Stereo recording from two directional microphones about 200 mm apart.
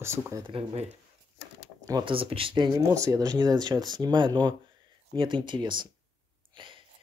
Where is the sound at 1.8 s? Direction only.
20° right (ahead or behind).